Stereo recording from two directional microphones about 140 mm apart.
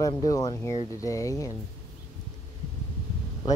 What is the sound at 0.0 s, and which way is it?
Speech, 25° left (ahead or behind).